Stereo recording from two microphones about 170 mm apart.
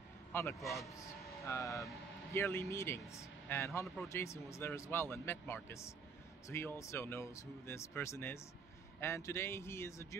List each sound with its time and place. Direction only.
0.3 s a man's voice: 15° left (ahead or behind)
0.6 s speech: centre (ahead or behind)
0.8 s speech: 20° left (ahead or behind)